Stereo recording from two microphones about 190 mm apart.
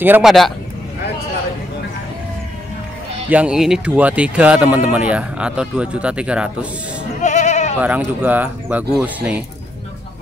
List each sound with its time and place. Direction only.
0.0 s a man's voice: 5° right (ahead or behind)
3.3 s speech: 5° right (ahead or behind)
7.2 s bleat: 40° left (ahead or behind)
7.8 s speech: 10° right (ahead or behind)